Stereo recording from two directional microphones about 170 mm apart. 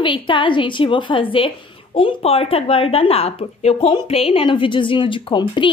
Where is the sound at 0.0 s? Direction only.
30° left (ahead or behind).